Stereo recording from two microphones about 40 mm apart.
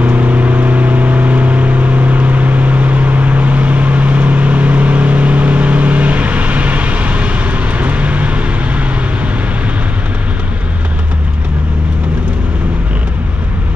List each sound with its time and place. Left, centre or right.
0.0 s vehicle: right